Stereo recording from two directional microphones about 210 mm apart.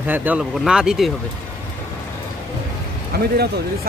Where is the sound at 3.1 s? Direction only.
50° right (ahead or behind).